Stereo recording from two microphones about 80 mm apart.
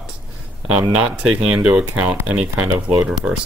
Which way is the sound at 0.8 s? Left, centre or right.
Centre.